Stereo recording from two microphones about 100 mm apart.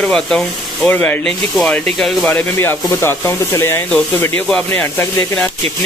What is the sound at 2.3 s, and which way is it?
Speech, 20° left (ahead or behind).